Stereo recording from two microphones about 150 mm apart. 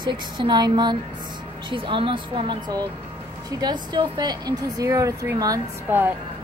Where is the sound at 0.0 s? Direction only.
30° right (ahead or behind).